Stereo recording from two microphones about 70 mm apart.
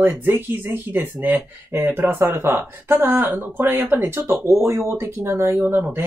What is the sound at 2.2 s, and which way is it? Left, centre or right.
Speech, right.